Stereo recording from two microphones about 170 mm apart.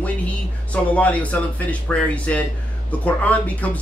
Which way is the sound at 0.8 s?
10° left (ahead or behind).